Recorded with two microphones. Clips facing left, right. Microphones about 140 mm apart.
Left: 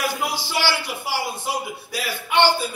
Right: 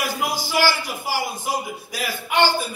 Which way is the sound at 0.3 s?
45° right (ahead or behind).